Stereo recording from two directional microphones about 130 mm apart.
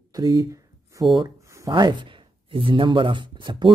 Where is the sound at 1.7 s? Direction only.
35° right (ahead or behind).